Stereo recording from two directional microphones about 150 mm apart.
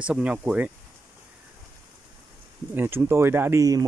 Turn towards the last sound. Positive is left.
turn(degrees=-25)  # may be behind; listen again after turning